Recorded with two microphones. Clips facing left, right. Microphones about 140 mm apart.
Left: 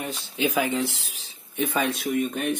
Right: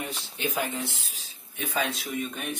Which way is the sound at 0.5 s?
90° left.